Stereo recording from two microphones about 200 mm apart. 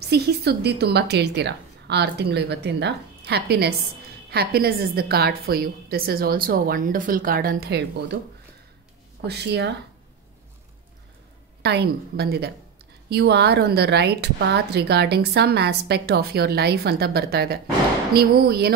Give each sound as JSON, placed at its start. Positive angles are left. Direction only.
{"t": 0.0, "sound": "a woman's voice", "side_deg": -55}
{"t": 9.2, "sound": "a woman's voice", "side_deg": -55}
{"t": 11.6, "sound": "a woman's voice", "side_deg": -55}